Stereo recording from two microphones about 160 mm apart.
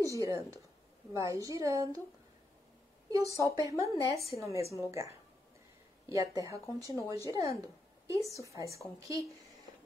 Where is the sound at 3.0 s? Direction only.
20° right (ahead or behind).